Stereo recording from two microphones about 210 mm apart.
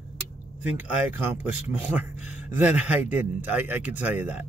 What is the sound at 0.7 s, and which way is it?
Speech, 10° right (ahead or behind).